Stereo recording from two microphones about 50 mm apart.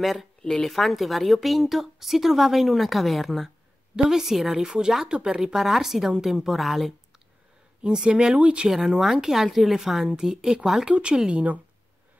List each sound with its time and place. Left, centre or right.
0.0 s a woman's voice: centre
3.9 s a woman's voice: centre
7.8 s speech: centre
8.6 s a woman's voice: centre